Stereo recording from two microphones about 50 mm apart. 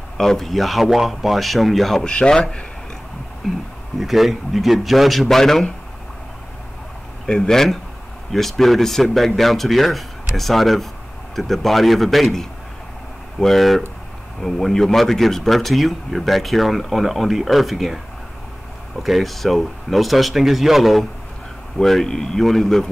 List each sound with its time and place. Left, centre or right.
0.2 s speech: centre
2.0 s speech: centre
4.0 s speech: centre
7.2 s speech: centre
21.7 s speech: centre